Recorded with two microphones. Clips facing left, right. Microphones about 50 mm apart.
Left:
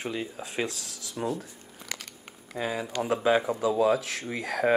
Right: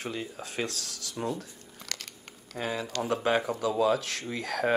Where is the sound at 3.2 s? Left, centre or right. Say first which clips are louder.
Left 4 dB; centre.